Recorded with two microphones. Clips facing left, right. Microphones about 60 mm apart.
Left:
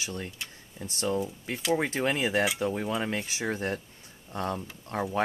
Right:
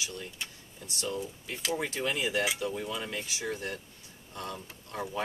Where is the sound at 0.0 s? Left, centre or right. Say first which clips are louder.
Left 3 dB; left.